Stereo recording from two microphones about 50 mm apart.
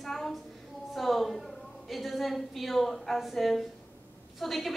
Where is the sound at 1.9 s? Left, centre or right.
Centre.